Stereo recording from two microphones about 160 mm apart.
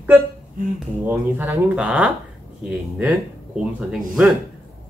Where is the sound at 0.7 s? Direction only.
10° right (ahead or behind).